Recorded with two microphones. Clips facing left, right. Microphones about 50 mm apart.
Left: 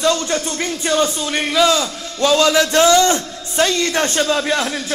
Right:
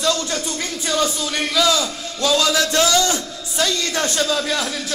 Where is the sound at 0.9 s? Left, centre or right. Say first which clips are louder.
Left 3 dB; left.